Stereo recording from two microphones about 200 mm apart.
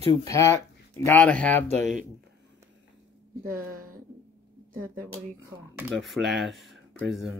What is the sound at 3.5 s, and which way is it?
Speech, 45° right (ahead or behind).